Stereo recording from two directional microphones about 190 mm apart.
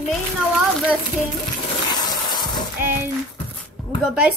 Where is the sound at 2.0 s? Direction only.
20° left (ahead or behind).